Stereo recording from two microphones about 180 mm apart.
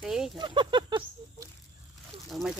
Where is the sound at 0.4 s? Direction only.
25° right (ahead or behind).